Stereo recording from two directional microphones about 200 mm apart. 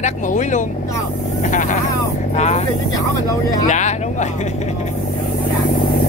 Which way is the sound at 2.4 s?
35° left (ahead or behind).